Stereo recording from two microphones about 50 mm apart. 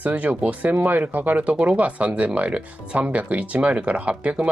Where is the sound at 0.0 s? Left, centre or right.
Right.